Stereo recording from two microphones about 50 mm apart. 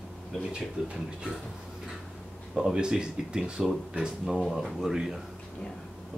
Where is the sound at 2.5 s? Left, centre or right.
Centre.